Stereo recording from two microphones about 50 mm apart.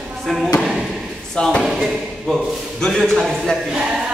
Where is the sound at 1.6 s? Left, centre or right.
Centre.